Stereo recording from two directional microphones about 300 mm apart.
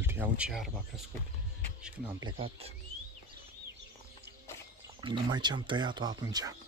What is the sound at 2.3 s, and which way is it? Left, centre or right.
Speech, centre.